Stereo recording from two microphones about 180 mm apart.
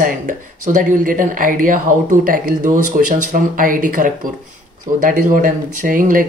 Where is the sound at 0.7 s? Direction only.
45° right (ahead or behind).